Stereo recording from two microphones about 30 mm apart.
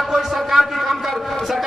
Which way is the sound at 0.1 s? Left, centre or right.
Centre.